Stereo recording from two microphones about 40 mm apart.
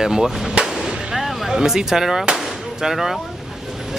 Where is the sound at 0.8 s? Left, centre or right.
Right.